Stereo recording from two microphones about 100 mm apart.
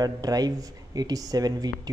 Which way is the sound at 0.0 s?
40° right (ahead or behind).